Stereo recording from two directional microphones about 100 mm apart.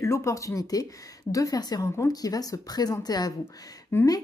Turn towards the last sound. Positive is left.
turn(degrees=35)  # may be behind; listen again after turning